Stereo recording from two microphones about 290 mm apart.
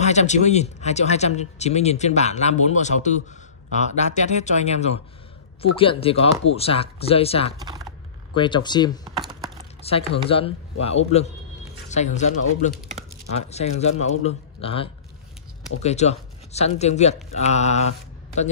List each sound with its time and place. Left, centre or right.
0.0 s speech: left
7.5 s typing: centre
8.4 s speech: centre